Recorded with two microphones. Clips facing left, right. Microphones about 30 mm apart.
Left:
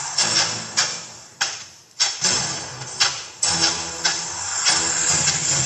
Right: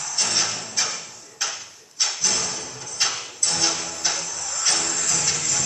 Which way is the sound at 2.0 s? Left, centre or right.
Left.